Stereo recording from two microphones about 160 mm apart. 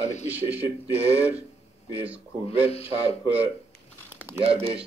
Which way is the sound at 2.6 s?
40° left (ahead or behind).